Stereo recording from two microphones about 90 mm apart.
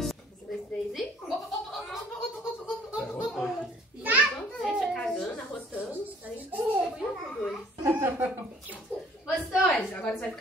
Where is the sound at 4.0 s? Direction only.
15° right (ahead or behind).